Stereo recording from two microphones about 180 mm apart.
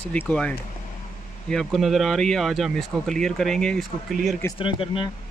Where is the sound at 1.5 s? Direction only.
Centre (ahead or behind).